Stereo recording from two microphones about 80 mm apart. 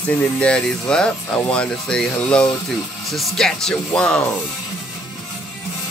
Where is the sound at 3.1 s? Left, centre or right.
Centre.